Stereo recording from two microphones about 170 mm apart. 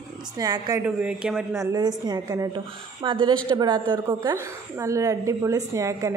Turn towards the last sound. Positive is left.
turn(degrees=-20)  # may be behind; listen again after turning